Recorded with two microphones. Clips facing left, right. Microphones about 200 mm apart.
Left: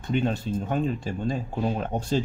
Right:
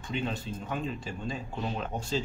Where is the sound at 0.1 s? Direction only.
45° left (ahead or behind).